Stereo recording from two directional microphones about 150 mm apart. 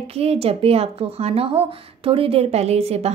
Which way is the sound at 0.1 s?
45° right (ahead or behind).